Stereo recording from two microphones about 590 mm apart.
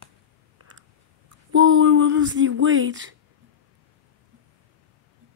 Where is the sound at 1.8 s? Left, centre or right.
Centre.